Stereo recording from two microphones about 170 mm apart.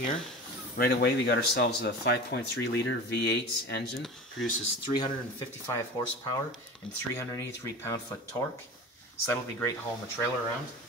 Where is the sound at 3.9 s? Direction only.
Centre (ahead or behind).